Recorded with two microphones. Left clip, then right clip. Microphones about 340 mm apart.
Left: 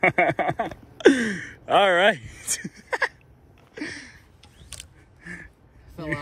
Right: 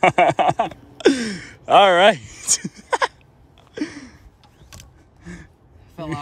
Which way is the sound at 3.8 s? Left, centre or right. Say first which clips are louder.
Right 5 dB; right.